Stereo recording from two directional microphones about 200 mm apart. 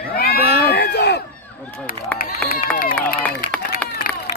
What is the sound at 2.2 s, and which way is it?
Run, 45° left (ahead or behind).